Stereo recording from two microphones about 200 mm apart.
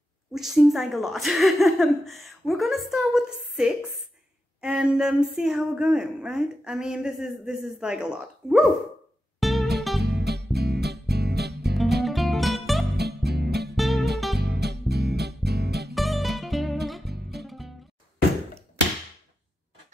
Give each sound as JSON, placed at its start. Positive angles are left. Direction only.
{"t": 0.3, "sound": "speech", "side_deg": 0}
{"t": 9.4, "sound": "music", "side_deg": 0}
{"t": 10.0, "sound": "music", "side_deg": -55}
{"t": 12.0, "sound": "music", "side_deg": 0}
{"t": 12.9, "sound": "music", "side_deg": -55}
{"t": 13.7, "sound": "music", "side_deg": 0}
{"t": 14.4, "sound": "music", "side_deg": -55}
{"t": 15.9, "sound": "music", "side_deg": 0}